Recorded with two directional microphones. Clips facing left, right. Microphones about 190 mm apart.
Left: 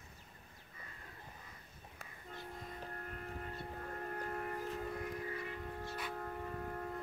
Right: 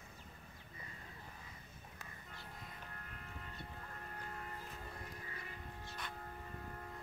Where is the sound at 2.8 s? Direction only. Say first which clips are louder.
Left 8 dB; 45° left (ahead or behind).